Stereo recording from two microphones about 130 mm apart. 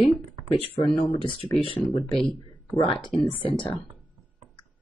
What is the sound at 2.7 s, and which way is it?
Speech, 40° left (ahead or behind).